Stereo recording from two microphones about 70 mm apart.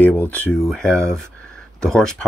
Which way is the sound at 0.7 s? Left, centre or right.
Centre.